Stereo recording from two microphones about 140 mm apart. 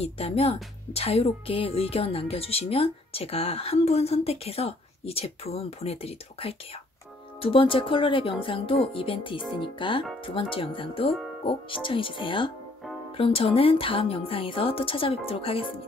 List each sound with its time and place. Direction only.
0.0 s a woman's voice: 45° left (ahead or behind)